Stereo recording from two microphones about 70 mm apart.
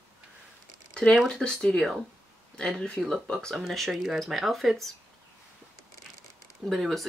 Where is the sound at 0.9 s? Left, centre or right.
Centre.